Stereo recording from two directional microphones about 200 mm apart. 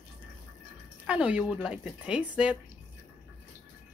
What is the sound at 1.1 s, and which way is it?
A woman's voice, 5° right (ahead or behind).